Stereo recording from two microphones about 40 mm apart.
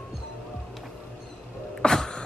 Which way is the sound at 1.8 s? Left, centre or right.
Centre.